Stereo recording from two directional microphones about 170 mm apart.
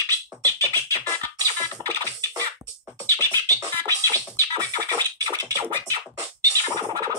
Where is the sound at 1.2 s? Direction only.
25° right (ahead or behind).